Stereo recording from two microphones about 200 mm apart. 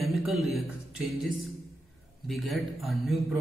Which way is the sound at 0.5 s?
Centre (ahead or behind).